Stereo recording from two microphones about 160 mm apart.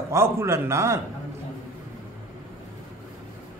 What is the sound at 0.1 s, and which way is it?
Speech, 15° right (ahead or behind).